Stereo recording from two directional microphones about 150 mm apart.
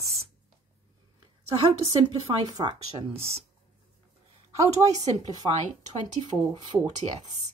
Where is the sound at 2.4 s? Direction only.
30° right (ahead or behind).